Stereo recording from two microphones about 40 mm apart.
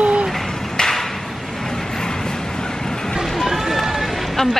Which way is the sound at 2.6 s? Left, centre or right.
Centre.